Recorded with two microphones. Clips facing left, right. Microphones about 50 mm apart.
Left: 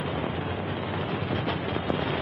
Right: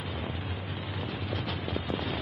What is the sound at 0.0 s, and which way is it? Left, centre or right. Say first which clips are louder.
Vehicle: left 7 dB; centre.